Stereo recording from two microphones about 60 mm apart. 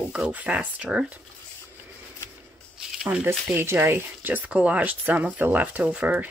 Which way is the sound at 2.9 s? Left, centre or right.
Centre.